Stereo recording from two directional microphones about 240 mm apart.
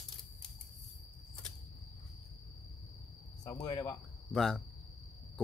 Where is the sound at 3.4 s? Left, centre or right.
Centre.